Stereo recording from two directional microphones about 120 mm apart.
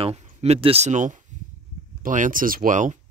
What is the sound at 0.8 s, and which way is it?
Speech, 90° right.